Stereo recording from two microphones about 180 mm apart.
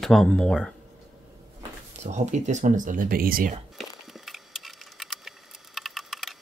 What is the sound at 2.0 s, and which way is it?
Speech, 40° right (ahead or behind).